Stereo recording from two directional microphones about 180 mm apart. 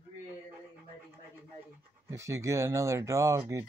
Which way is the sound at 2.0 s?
15° right (ahead or behind).